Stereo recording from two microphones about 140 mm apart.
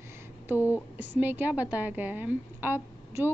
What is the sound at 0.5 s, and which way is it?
A woman's voice, 15° right (ahead or behind).